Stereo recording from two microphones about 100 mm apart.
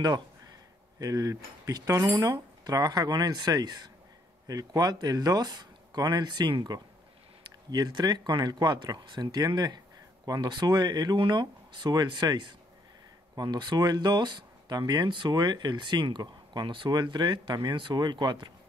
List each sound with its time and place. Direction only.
0.9 s speech: 35° right (ahead or behind)